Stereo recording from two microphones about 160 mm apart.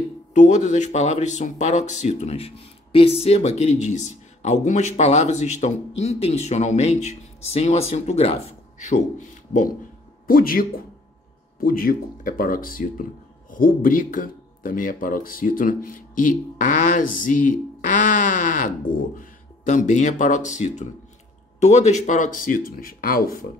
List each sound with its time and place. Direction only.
0.3 s speech: 50° left (ahead or behind)